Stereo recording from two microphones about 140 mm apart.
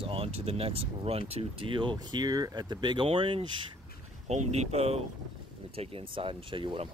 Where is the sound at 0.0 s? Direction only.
40° right (ahead or behind).